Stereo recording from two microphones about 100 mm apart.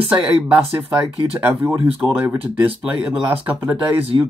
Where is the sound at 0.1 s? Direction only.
20° right (ahead or behind).